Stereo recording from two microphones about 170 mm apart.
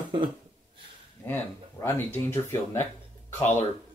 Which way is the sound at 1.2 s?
15° left (ahead or behind).